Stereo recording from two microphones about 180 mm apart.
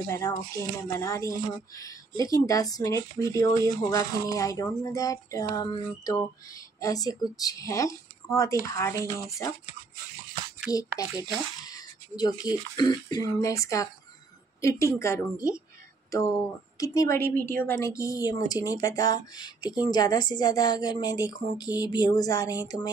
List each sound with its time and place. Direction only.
0.1 s speech: 20° left (ahead or behind)
10.7 s a woman's voice: 20° left (ahead or behind)
16.7 s speech: 20° left (ahead or behind)